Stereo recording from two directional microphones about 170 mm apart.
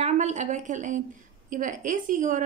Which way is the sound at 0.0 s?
45° right (ahead or behind).